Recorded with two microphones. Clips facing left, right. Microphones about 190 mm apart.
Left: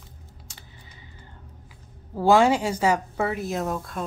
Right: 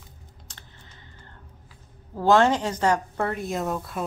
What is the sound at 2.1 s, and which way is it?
Speech, 10° left (ahead or behind).